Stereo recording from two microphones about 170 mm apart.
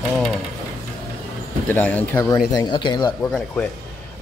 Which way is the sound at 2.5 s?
25° left (ahead or behind).